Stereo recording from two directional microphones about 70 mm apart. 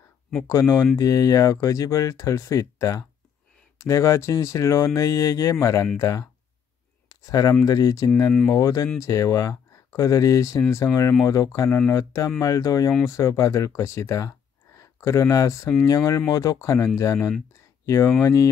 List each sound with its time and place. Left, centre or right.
0.5 s speech: left